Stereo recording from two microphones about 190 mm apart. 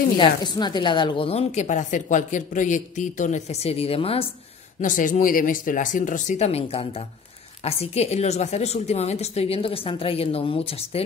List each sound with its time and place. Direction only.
0.2 s a woman's voice: 20° left (ahead or behind)
4.8 s a woman's voice: 45° left (ahead or behind)